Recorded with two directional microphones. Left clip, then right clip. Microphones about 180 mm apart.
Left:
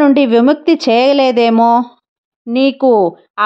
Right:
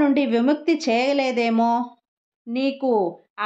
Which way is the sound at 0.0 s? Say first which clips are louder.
Left 10 dB; 50° left (ahead or behind).